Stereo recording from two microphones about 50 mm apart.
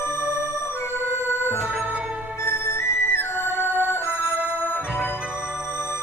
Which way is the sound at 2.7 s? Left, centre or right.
Left.